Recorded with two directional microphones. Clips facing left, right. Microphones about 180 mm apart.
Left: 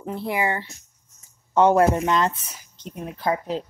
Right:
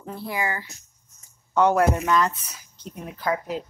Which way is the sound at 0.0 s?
20° left (ahead or behind).